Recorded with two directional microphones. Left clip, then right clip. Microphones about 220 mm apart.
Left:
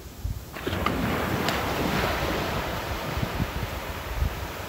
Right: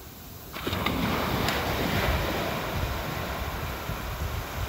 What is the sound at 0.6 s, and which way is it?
Boat, 50° right (ahead or behind).